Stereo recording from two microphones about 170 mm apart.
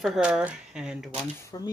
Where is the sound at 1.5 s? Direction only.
20° left (ahead or behind).